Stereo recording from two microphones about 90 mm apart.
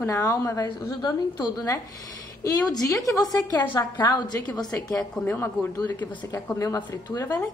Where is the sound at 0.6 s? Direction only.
50° left (ahead or behind).